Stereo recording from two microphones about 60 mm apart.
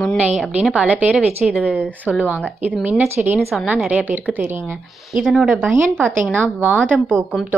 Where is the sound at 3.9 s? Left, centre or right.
Right.